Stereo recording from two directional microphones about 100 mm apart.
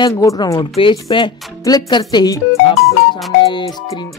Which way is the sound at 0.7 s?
60° left (ahead or behind).